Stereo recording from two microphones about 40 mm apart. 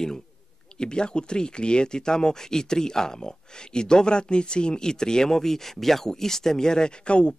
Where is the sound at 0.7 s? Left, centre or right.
Left.